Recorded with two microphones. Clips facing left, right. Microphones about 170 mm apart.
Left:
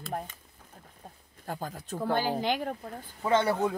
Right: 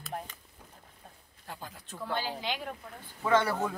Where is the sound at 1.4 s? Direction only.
45° left (ahead or behind).